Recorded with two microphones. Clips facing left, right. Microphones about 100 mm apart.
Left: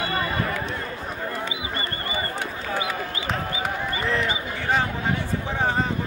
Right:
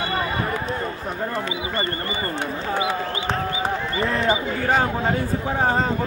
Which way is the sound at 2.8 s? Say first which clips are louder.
Right 4 dB; 30° right (ahead or behind).